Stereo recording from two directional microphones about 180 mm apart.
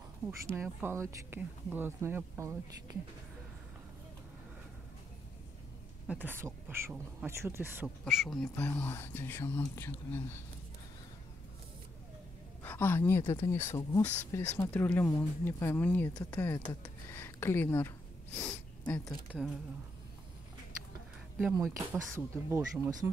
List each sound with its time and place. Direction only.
0.6 s speech: 15° right (ahead or behind)
6.0 s speech: 10° right (ahead or behind)
8.0 s speech: centre (ahead or behind)
12.6 s a woman's voice: 10° left (ahead or behind)
21.7 s speech: 15° right (ahead or behind)